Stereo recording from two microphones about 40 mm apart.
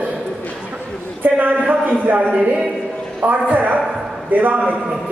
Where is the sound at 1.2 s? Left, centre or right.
Right.